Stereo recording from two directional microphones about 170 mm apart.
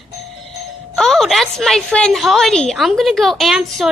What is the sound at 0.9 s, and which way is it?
A woman's voice, centre (ahead or behind).